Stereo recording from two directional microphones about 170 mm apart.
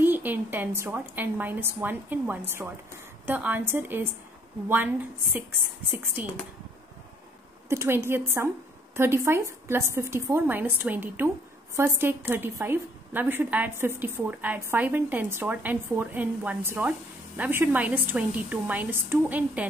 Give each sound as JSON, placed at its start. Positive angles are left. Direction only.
{"t": 0.0, "sound": "a woman's voice", "side_deg": -10}
{"t": 6.2, "sound": "a woman's voice", "side_deg": -10}
{"t": 7.7, "sound": "a woman's voice", "side_deg": -15}